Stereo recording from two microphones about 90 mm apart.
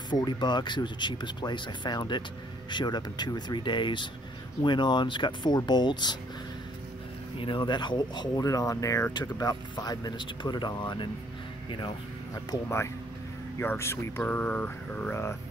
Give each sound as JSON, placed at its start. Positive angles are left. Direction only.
{"t": 0.1, "sound": "speech", "side_deg": 55}
{"t": 7.3, "sound": "speech", "side_deg": 70}
{"t": 8.4, "sound": "speech", "side_deg": 40}
{"t": 9.1, "sound": "speech", "side_deg": 50}
{"t": 12.6, "sound": "speech", "side_deg": 30}
{"t": 14.2, "sound": "speech", "side_deg": 15}